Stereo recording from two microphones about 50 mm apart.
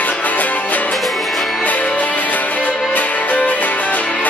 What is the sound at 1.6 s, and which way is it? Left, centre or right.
Music, left.